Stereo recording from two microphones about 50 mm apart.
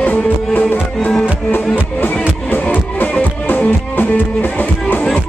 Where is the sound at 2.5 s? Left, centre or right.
Left.